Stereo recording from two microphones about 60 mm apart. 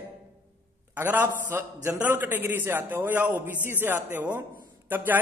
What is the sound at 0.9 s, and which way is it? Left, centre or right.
Speech, right.